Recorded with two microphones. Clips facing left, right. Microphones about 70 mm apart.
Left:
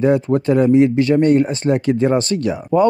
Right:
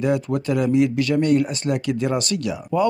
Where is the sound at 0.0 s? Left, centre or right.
Left.